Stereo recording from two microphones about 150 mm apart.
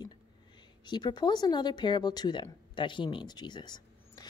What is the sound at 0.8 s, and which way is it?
Speech, 30° left (ahead or behind).